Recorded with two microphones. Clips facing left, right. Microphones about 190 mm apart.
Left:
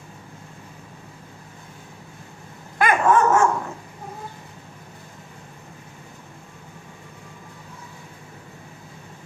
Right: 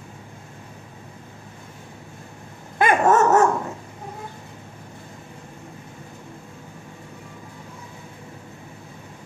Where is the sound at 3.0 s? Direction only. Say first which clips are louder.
Right 1 dB; 40° right (ahead or behind).